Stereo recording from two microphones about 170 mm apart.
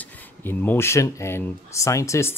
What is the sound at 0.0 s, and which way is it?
Speech, 10° left (ahead or behind).